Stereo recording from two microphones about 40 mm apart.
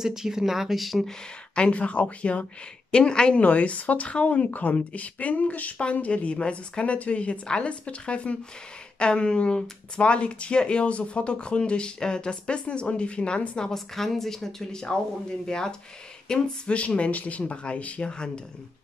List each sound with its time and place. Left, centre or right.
0.0 s speech: centre
1.5 s speech: left
2.9 s speech: left
3.3 s speech: left
13.7 s speech: centre
16.3 s speech: left
18.1 s speech: left